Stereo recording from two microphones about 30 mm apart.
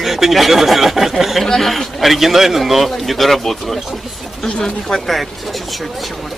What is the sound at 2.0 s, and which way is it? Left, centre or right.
A man's voice, centre.